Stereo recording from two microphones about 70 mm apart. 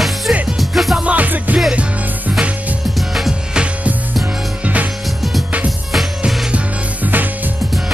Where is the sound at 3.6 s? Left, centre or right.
Centre.